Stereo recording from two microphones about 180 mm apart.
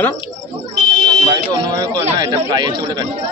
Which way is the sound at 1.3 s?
20° right (ahead or behind).